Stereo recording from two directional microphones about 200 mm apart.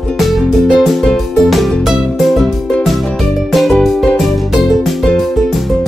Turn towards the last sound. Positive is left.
turn(degrees=0)  # may be behind; listen again after turning